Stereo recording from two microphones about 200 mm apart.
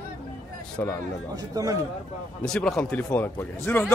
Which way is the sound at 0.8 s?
10° left (ahead or behind).